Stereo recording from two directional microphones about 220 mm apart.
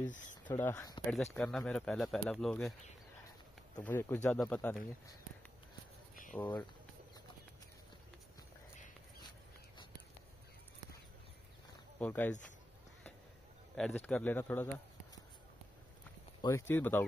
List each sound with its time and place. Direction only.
0.0 s speech: 35° left (ahead or behind)
0.6 s speech: 10° left (ahead or behind)
1.0 s speech: 5° left (ahead or behind)
3.8 s speech: 10° left (ahead or behind)
6.3 s speech: 5° left (ahead or behind)
12.0 s speech: 5° left (ahead or behind)
13.7 s speech: 5° left (ahead or behind)
16.3 s speech: 15° left (ahead or behind)